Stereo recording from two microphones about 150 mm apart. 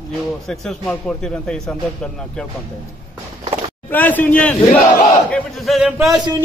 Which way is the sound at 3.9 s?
10° left (ahead or behind).